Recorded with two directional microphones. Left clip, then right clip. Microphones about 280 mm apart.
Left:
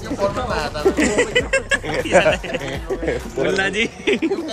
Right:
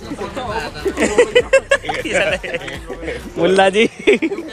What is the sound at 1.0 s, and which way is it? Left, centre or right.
Speech, centre.